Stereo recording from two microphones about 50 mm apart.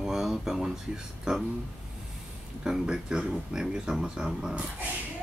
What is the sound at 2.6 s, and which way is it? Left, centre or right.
Speech, centre.